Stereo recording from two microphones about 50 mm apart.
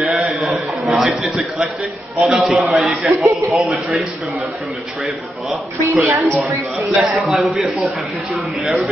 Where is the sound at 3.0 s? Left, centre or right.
Centre.